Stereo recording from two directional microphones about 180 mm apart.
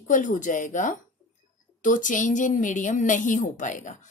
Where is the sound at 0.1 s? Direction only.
45° left (ahead or behind).